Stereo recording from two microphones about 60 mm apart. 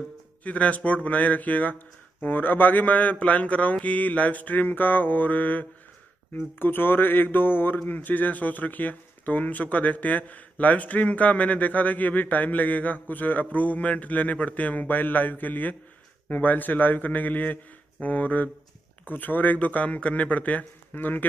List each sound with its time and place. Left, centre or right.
0.4 s speech: left